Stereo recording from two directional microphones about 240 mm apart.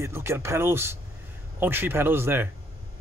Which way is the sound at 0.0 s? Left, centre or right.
Centre.